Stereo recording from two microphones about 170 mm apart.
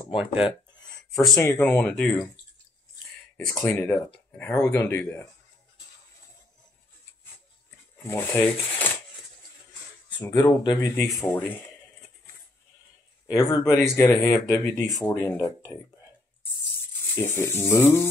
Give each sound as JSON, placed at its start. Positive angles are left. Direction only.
{"t": 0.0, "sound": "a sound", "side_deg": 30}
{"t": 1.4, "sound": "speech", "side_deg": 15}
{"t": 3.3, "sound": "speech", "side_deg": 15}
{"t": 8.0, "sound": "speech", "side_deg": 15}
{"t": 10.1, "sound": "speech", "side_deg": 10}
{"t": 10.6, "sound": "speech", "side_deg": 25}
{"t": 11.2, "sound": "speech", "side_deg": 10}
{"t": 13.3, "sound": "speech", "side_deg": 20}
{"t": 17.1, "sound": "speech", "side_deg": 15}